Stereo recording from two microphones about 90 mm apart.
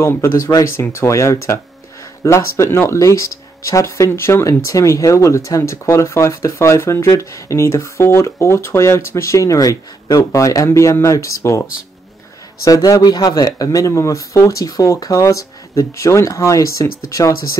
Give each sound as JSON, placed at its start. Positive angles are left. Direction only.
{"t": 0.0, "sound": "speech", "side_deg": 30}
{"t": 12.6, "sound": "speech", "side_deg": 40}